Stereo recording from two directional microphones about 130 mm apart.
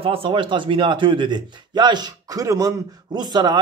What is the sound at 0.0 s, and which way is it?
Speech, 45° right (ahead or behind).